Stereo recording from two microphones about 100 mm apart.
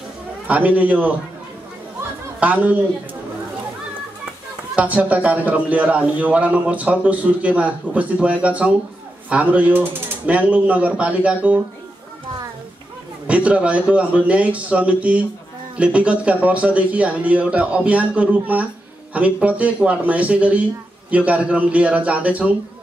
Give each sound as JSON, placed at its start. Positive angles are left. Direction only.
{"t": 0.5, "sound": "a man's voice", "side_deg": -15}
{"t": 2.4, "sound": "a man's voice", "side_deg": -15}
{"t": 4.7, "sound": "a man's voice", "side_deg": -15}
{"t": 13.3, "sound": "a man's voice", "side_deg": -15}